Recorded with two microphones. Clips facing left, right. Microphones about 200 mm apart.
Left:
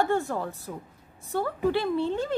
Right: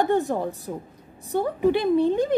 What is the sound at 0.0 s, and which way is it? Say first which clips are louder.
A woman's voice: right 4 dB; 20° right (ahead or behind).